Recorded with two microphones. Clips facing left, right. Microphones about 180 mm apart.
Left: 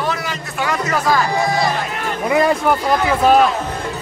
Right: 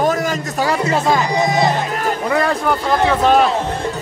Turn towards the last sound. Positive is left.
turn(degrees=5)  # may be behind; listen again after turning